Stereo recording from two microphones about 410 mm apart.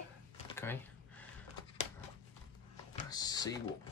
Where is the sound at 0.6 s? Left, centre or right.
Centre.